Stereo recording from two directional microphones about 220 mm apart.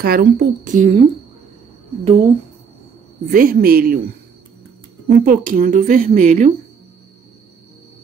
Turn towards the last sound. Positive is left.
turn(degrees=-35)  # may be behind; listen again after turning